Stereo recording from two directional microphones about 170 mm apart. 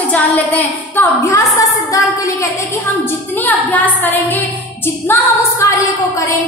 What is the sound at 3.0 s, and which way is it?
Female singing, 10° left (ahead or behind).